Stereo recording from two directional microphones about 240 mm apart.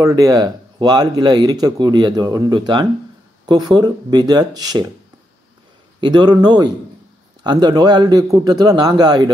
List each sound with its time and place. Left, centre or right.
0.0 s speech: centre
5.9 s speech: centre